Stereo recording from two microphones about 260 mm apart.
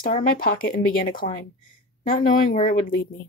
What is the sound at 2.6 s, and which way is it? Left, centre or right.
Speech, left.